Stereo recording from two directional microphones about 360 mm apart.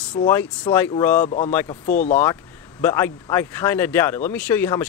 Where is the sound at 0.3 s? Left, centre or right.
Centre.